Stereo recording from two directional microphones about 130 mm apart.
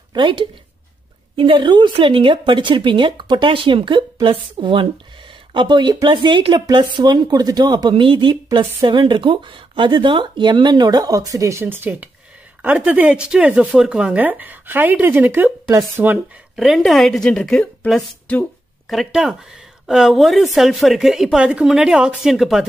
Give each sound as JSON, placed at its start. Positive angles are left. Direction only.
{"t": 0.1, "sound": "a woman's voice", "side_deg": -40}
{"t": 16.5, "sound": "a woman's voice", "side_deg": 0}
{"t": 18.9, "sound": "a woman's voice", "side_deg": -5}